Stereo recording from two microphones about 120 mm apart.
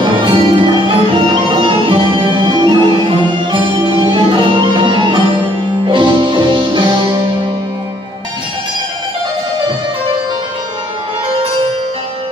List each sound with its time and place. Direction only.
0.0 s music: 45° right (ahead or behind)